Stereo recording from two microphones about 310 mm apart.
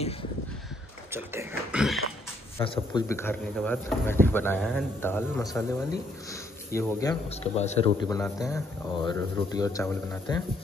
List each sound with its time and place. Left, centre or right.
1.1 s a sound: centre
2.6 s speech: centre
6.7 s speech: centre
8.2 s speech: centre